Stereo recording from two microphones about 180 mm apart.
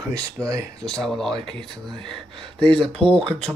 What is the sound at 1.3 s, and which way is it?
Speech, 25° right (ahead or behind).